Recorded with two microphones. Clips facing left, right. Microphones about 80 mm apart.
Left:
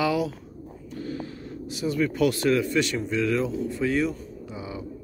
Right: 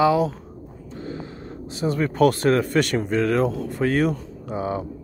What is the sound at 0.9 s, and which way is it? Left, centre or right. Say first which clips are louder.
Vehicle: even; right.